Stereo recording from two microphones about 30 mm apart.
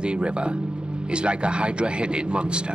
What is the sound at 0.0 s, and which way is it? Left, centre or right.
Speech, right.